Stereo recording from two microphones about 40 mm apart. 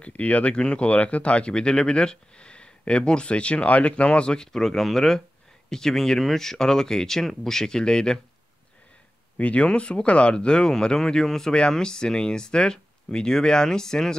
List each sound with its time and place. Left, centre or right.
0.0 s speech: left
1.5 s speech: centre
4.5 s speech: centre
9.4 s speech: left; by 14.1 s centre